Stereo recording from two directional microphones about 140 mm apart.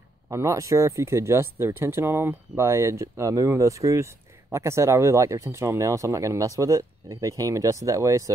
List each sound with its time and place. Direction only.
0.3 s speech: 20° right (ahead or behind)